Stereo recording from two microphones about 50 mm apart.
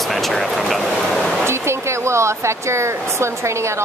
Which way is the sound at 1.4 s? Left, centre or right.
Right.